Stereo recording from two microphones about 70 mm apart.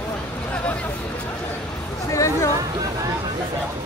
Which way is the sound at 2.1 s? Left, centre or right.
Left.